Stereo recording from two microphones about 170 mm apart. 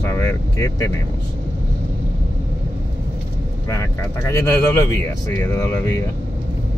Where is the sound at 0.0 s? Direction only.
15° left (ahead or behind).